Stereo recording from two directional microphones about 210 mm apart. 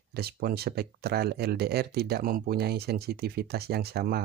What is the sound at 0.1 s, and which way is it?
Speech, 50° right (ahead or behind).